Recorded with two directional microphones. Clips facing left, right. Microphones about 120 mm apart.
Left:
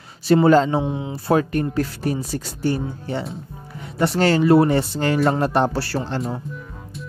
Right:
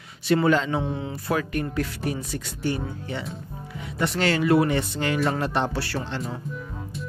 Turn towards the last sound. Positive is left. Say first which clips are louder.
# left 5 dB
turn(degrees=35)  # may be behind; listen again after turning